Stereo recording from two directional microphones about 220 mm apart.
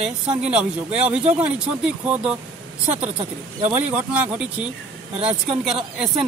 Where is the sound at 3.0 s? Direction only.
30° right (ahead or behind).